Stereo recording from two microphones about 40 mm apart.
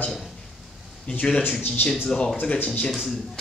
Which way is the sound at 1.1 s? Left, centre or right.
Left.